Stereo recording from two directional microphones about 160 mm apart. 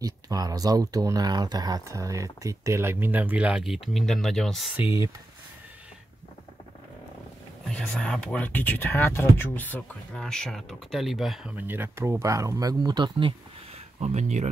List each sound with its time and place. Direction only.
0.0 s speech: 25° right (ahead or behind); by 4.7 s centre (ahead or behind)
7.7 s speech: 5° left (ahead or behind); by 13.3 s 25° right (ahead or behind)
13.9 s speech: 45° right (ahead or behind)